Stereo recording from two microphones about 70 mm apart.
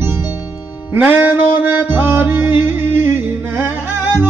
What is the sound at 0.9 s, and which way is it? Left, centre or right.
Music, right.